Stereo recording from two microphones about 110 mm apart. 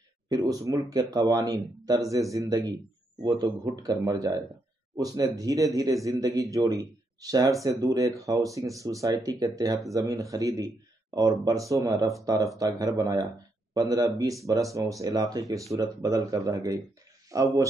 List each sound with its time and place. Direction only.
0.3 s speech: 35° right (ahead or behind)